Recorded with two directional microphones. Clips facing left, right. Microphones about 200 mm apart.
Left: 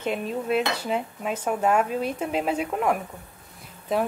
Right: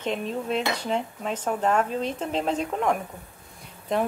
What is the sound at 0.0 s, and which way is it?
Dishes, 5° left (ahead or behind).